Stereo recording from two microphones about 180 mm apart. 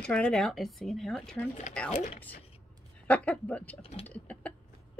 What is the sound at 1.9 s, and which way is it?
Speech, 40° left (ahead or behind).